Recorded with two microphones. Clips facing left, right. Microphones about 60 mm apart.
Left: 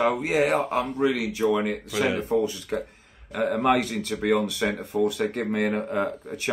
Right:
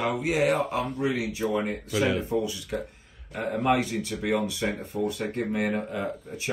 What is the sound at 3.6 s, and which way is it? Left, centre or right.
Speech, left.